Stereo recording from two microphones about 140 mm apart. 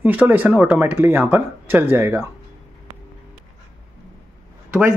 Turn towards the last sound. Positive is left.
turn(degrees=-15)  # may be behind; listen again after turning